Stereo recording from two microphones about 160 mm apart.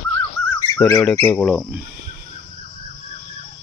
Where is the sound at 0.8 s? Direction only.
10° left (ahead or behind).